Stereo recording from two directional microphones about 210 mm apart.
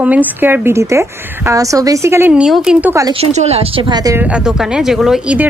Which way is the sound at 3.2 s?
30° right (ahead or behind).